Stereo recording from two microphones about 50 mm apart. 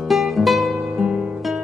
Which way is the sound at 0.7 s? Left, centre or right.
Centre.